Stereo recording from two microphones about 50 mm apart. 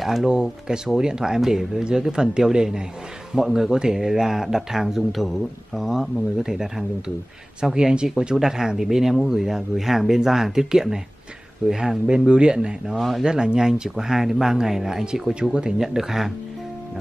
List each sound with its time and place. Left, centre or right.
0.0 s speech: centre
12.9 s speech: centre
13.2 s speech: centre